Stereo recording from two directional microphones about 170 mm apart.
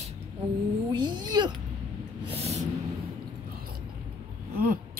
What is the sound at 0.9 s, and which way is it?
Speech, 25° right (ahead or behind).